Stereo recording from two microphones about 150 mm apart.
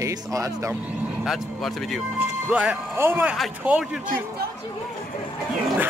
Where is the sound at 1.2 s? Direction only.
Centre (ahead or behind).